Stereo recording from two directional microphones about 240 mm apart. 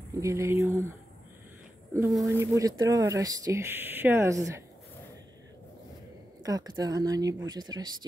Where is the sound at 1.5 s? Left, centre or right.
Centre.